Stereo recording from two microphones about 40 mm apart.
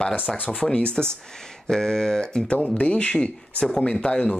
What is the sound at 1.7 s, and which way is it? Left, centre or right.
Speech, centre.